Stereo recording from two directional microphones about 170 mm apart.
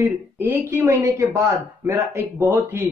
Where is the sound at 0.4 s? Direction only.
10° right (ahead or behind).